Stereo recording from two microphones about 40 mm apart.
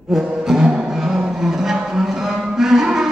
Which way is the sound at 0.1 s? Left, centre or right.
Centre.